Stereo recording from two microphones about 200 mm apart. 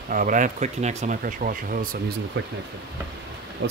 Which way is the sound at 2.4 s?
65° right (ahead or behind).